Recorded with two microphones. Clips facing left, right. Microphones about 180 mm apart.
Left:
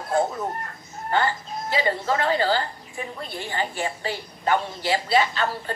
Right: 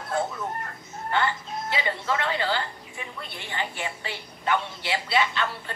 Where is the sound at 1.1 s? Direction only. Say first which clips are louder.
Left 3 dB; 40° left (ahead or behind).